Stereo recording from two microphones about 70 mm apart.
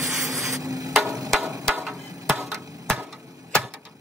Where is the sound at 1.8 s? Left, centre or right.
Centre.